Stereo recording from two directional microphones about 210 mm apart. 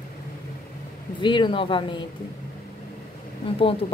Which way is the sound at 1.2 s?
20° left (ahead or behind).